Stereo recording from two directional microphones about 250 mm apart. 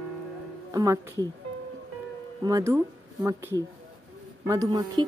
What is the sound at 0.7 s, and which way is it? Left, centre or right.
Speech, centre.